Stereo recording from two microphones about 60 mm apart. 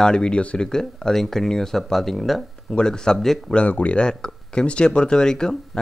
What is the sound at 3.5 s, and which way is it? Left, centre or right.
Speech, left.